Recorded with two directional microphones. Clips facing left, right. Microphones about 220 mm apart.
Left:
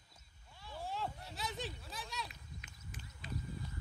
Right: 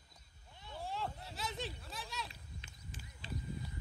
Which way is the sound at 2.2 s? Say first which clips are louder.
Even; 30° right (ahead or behind).